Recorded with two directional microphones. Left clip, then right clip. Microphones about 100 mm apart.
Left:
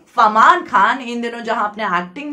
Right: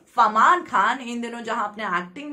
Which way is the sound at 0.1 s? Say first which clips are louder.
Left 6 dB; 20° left (ahead or behind).